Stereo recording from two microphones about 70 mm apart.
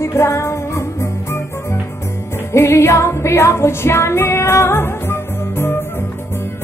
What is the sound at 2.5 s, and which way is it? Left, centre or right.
Music, left.